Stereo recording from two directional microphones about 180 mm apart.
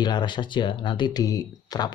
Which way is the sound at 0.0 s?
25° left (ahead or behind).